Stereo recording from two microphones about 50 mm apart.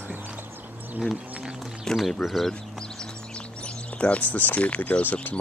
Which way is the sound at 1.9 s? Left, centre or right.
Centre.